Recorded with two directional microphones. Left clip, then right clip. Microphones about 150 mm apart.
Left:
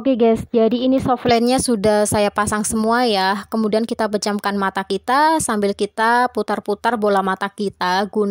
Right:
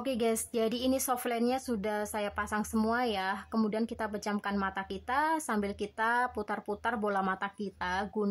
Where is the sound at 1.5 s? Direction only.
60° left (ahead or behind).